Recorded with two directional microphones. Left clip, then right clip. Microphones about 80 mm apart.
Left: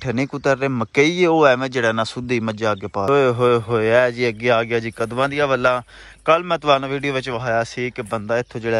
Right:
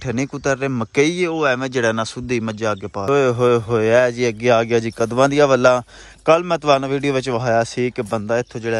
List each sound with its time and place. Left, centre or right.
0.1 s a man's voice: right
6.2 s a man's voice: right